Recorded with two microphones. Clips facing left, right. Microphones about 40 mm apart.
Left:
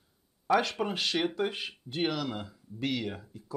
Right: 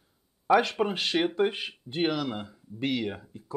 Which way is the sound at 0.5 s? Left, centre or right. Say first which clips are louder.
Right 4 dB; centre.